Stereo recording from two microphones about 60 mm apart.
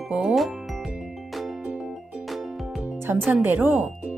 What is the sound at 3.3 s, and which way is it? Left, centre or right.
Speech, right.